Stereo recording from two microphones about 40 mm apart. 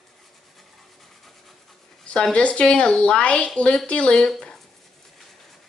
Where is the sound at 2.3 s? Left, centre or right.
Left.